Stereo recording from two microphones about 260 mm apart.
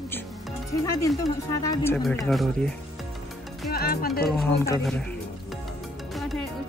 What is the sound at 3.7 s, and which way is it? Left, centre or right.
Speech, left.